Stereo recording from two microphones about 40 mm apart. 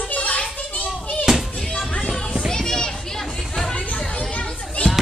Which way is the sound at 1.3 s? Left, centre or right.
Centre.